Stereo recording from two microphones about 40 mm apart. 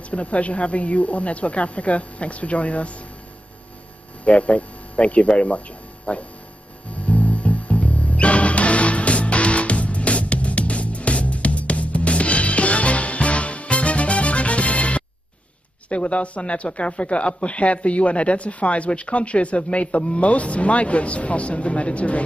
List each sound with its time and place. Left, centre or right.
0.1 s speech: left
4.2 s speech: left
6.9 s music: left
15.9 s speech: left